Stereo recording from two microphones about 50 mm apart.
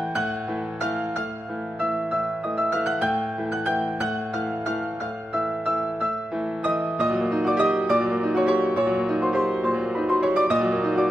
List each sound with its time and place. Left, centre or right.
3.6 s music: centre
6.7 s music: centre
7.5 s music: centre
8.2 s music: centre
10.6 s music: centre